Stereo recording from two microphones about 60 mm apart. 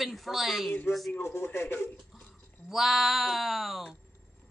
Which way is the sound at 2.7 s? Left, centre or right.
Centre.